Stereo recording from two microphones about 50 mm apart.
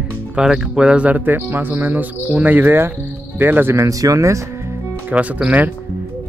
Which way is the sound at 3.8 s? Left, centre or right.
Right.